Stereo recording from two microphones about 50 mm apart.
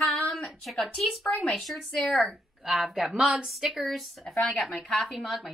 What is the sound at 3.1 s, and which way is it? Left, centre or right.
Speech, right.